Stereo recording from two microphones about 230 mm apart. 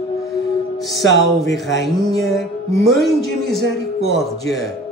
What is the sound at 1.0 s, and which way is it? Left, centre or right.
Speech, left.